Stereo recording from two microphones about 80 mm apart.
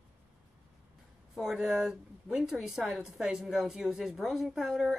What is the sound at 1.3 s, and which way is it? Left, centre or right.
A woman's voice, centre.